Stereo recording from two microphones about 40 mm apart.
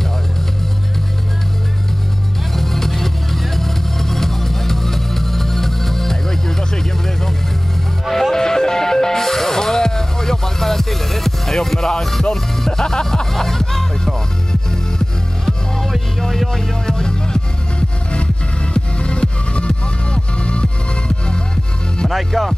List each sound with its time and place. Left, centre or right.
2.5 s music: centre
6.7 s vehicle: centre
8.0 s music: centre
16.8 s music: centre
22.1 s music: centre